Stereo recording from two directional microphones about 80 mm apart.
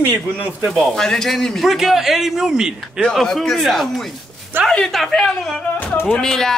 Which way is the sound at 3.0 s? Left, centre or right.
Centre.